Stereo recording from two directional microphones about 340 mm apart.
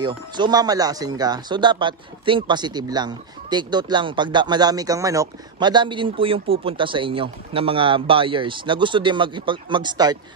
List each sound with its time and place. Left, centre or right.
0.0 s speech: centre